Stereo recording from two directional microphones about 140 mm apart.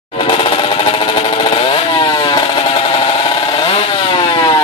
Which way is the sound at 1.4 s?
40° left (ahead or behind).